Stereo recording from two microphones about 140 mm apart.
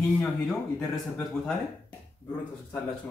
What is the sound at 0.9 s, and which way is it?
Speech, 5° left (ahead or behind).